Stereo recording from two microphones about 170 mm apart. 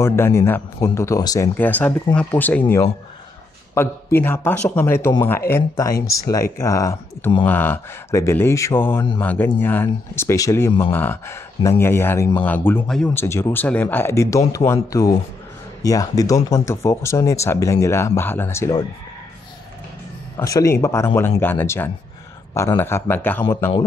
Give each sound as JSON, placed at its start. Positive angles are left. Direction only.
{"t": 0.0, "sound": "speech", "side_deg": 15}
{"t": 3.7, "sound": "speech", "side_deg": 15}
{"t": 13.2, "sound": "speech", "side_deg": 15}
{"t": 20.3, "sound": "speech", "side_deg": 20}